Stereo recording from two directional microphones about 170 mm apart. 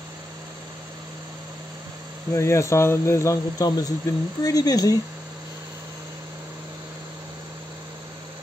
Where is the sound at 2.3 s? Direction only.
15° left (ahead or behind).